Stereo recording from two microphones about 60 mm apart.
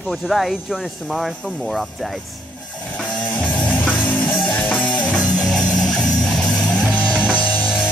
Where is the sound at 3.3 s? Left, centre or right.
Left.